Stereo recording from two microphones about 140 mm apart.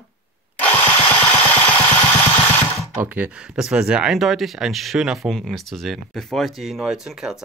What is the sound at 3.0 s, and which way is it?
Speech, 10° right (ahead or behind).